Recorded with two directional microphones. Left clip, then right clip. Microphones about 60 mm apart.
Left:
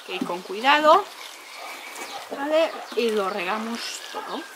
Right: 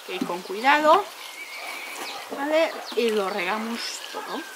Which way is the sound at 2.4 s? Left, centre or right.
Centre.